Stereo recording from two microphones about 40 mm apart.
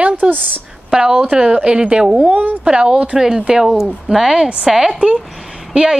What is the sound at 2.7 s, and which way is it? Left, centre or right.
A woman's voice, right.